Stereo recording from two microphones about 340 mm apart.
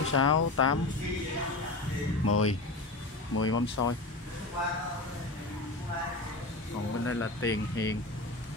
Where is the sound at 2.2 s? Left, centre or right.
Left.